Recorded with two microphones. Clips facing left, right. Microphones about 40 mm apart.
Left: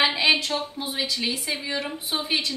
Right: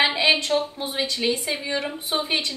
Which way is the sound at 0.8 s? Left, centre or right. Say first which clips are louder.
Right 3 dB; centre.